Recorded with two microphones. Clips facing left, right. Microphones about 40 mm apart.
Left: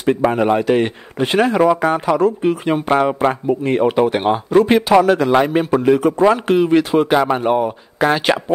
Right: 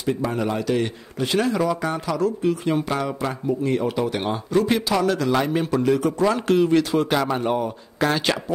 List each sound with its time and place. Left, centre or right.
0.0 s a man's voice: left